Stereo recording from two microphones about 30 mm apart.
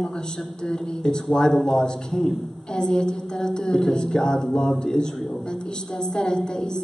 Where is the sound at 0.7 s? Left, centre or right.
Left.